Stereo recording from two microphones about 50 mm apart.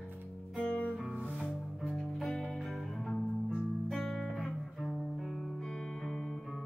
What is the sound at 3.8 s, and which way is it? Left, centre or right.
Music, centre.